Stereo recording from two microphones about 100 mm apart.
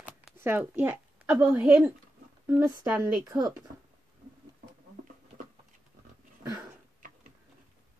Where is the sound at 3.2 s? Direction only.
40° right (ahead or behind).